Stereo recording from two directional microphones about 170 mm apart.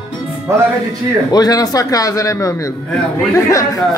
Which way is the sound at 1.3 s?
20° left (ahead or behind).